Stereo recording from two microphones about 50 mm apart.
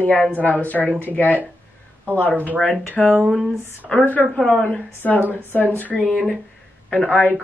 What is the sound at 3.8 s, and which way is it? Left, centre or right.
Speech, centre.